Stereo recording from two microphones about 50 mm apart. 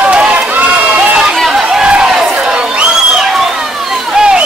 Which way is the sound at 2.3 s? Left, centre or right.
Centre.